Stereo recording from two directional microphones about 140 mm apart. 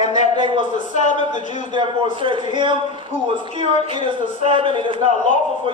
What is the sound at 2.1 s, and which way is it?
Speech, 35° right (ahead or behind).